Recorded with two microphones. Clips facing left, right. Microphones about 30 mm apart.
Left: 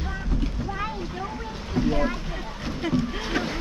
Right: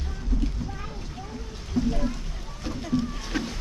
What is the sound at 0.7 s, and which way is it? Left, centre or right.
Boat, left.